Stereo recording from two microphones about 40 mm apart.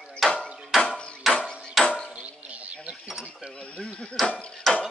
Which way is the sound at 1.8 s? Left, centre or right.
Centre.